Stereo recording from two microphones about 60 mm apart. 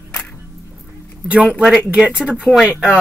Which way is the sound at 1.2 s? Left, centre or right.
Right.